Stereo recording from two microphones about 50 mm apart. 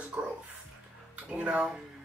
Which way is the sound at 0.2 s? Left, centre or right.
Right.